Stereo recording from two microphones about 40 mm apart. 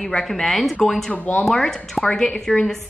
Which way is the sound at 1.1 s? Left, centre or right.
Left.